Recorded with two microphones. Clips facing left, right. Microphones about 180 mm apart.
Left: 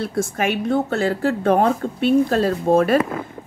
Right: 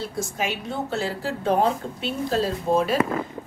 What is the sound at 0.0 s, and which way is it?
Speech, 60° left (ahead or behind).